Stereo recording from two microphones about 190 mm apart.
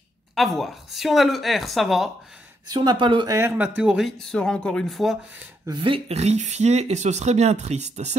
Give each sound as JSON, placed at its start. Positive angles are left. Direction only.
{"t": 0.3, "sound": "speech", "side_deg": 0}
{"t": 2.7, "sound": "speech", "side_deg": -20}
{"t": 3.3, "sound": "speech", "side_deg": -10}
{"t": 5.7, "sound": "speech", "side_deg": -30}